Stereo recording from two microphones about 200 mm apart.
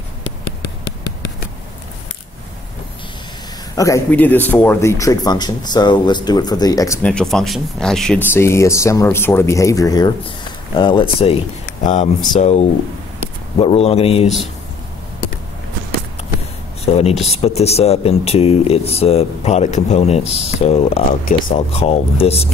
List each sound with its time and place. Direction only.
3.7 s a man's voice: 15° left (ahead or behind)
11.8 s a man's voice: 35° left (ahead or behind)
16.8 s speech: 30° left (ahead or behind)